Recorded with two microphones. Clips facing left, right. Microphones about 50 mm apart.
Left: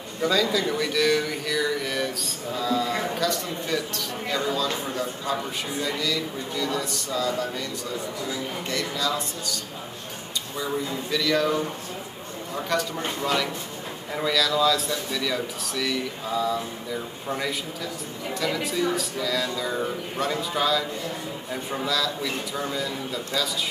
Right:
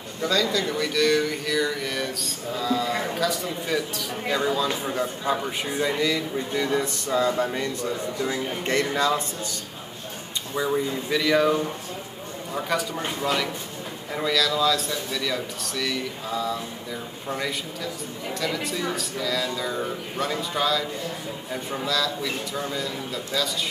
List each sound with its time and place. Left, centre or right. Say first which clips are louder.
0.2 s speech: left 1 dB; centre; by 9.6 s right
10.5 s speech: right 4 dB; centre